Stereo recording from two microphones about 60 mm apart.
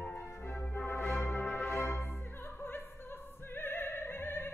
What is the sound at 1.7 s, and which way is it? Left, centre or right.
Music, left.